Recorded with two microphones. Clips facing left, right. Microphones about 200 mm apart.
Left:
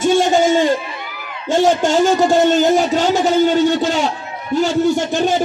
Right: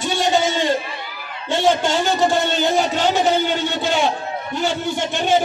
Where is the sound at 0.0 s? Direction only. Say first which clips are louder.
Left 6 dB; 50° left (ahead or behind).